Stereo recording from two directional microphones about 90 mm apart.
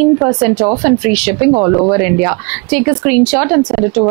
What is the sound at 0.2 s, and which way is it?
Speech, 25° right (ahead or behind).